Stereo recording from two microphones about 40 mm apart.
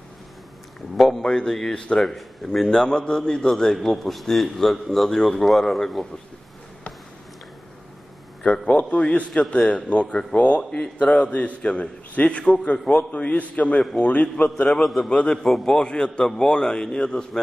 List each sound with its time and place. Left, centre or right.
0.9 s a man's voice: centre
1.2 s a man's voice: centre
2.0 s a man's voice: centre
2.7 s a man's voice: centre
8.6 s a man's voice: left
10.7 s a man's voice: left
11.1 s a man's voice: left
14.7 s a man's voice: centre
15.0 s a man's voice: left
15.3 s a man's voice: centre